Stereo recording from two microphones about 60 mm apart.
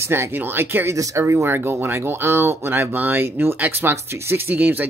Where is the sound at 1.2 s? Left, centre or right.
Right.